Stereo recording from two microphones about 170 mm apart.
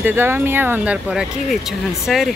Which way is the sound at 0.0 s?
15° right (ahead or behind).